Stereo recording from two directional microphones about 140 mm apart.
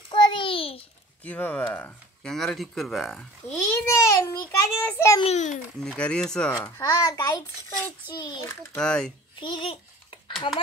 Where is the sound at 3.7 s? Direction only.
20° left (ahead or behind).